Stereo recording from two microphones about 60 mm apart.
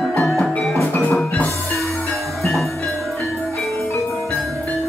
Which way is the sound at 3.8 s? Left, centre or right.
Left.